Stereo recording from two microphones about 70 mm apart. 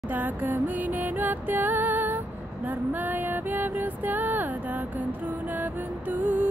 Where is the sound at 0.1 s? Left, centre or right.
Right.